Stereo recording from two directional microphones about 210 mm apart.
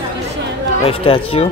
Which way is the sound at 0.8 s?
25° left (ahead or behind).